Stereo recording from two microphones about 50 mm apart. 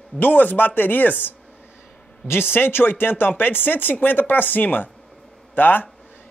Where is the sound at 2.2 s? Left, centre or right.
Left.